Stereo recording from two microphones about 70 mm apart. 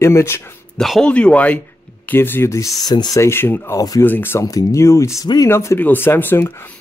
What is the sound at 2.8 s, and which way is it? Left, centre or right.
Speech, left.